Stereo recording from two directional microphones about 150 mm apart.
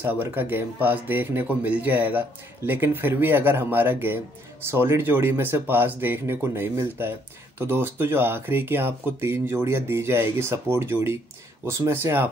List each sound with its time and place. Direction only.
0.0 s speech: 15° right (ahead or behind)